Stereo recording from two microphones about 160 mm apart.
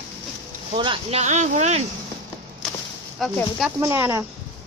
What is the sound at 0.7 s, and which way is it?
Speech, 30° right (ahead or behind).